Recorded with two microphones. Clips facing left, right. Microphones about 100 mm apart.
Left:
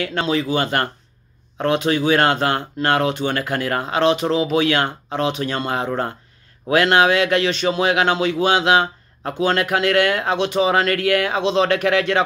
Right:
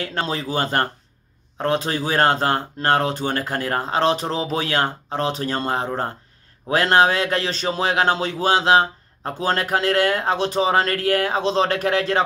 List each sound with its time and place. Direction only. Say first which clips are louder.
0.1 s speech: left 4 dB; 40° right (ahead or behind)